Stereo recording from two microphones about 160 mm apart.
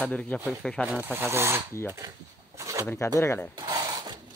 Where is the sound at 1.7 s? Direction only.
15° left (ahead or behind).